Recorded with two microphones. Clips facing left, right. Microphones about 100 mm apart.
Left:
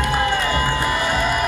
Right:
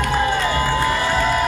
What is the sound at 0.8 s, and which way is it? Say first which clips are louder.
Music: right 2 dB; 15° left (ahead or behind).